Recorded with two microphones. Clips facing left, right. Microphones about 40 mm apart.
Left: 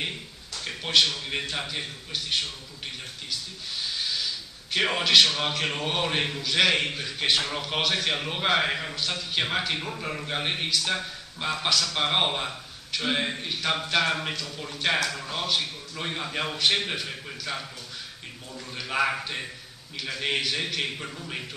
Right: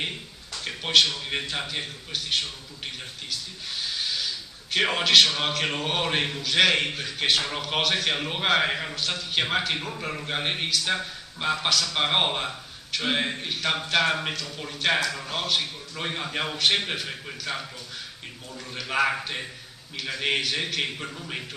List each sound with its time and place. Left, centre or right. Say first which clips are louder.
0.7 s a man's voice: right 2 dB; centre
4.7 s a man's voice: right 1 dB; centre